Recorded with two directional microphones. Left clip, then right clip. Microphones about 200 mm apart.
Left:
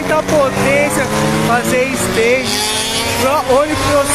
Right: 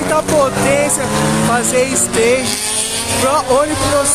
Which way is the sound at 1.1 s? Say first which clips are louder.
Left 1 dB; 55° right (ahead or behind).